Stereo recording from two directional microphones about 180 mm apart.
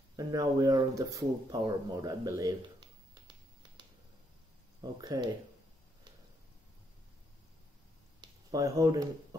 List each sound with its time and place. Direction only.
0.1 s speech: 20° right (ahead or behind)
4.9 s speech: 20° right (ahead or behind)
8.2 s a sound: 20° right (ahead or behind)